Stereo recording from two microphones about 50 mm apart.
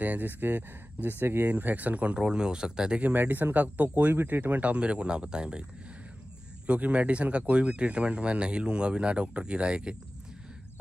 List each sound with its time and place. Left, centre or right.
0.0 s speech: right
1.5 s speech: right
2.1 s speech: centre
3.0 s speech: right